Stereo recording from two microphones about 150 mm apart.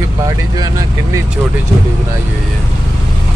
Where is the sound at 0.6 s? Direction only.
20° right (ahead or behind).